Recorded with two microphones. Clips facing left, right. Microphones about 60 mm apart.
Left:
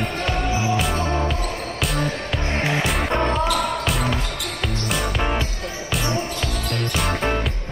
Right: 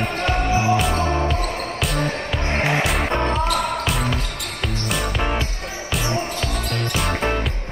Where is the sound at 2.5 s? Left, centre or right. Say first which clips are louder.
Right 2 dB; right.